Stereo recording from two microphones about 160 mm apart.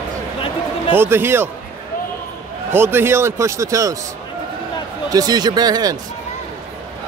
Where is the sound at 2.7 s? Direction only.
15° right (ahead or behind).